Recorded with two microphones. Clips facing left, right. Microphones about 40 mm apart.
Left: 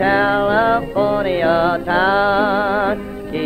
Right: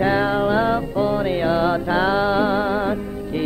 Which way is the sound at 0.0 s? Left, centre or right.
Left.